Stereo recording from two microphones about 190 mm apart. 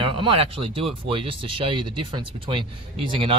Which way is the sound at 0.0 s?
25° right (ahead or behind).